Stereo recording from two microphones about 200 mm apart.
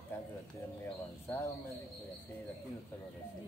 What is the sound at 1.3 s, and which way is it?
Speech, 5° left (ahead or behind).